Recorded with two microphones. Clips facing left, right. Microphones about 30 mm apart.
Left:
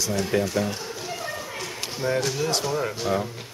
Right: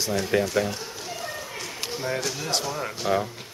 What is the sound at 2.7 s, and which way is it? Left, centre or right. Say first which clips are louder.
Speech: left 4 dB; centre.